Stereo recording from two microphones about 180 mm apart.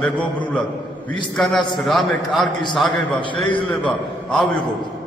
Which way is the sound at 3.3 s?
25° left (ahead or behind).